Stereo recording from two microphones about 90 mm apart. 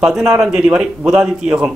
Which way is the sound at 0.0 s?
5° right (ahead or behind).